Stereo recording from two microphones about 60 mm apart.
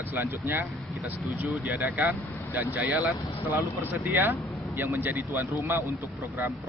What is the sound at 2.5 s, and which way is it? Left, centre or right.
A man's voice, right.